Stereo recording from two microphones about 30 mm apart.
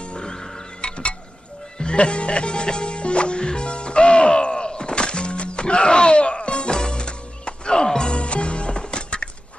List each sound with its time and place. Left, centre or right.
0.0 s music: left
0.7 s music: left
8.1 s music: left